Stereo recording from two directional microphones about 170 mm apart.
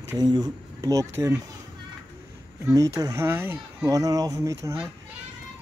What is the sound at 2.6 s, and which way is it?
Speech, 20° right (ahead or behind).